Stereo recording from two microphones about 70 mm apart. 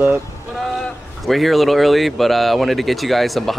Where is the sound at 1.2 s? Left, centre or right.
Centre.